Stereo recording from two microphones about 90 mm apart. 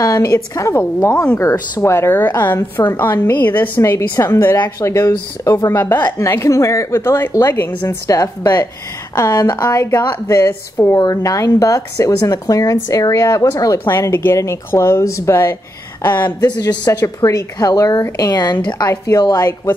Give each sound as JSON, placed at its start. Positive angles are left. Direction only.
{"t": 0.0, "sound": "a woman's voice", "side_deg": 45}
{"t": 8.1, "sound": "a woman's voice", "side_deg": 40}
{"t": 13.8, "sound": "a woman's voice", "side_deg": 25}
{"t": 16.3, "sound": "a woman's voice", "side_deg": 45}
{"t": 18.9, "sound": "a woman's voice", "side_deg": 40}